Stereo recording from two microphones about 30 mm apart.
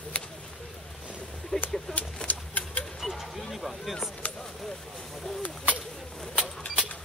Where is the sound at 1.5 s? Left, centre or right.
Left.